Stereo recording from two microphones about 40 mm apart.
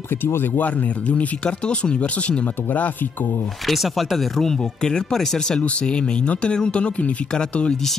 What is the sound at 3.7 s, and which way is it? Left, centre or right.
Speech, centre.